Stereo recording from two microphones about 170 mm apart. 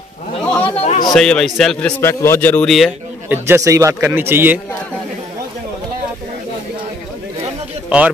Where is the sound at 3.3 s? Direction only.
15° right (ahead or behind).